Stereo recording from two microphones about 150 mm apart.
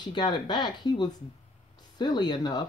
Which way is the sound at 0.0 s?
30° left (ahead or behind).